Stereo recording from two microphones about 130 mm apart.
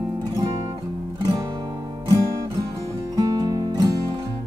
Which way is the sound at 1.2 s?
30° right (ahead or behind).